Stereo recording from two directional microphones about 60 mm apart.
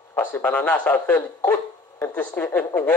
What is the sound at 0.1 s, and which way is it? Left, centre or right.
Speech, left.